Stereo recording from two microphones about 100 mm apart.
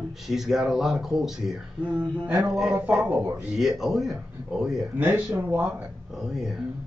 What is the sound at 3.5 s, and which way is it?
Speech, 5° right (ahead or behind).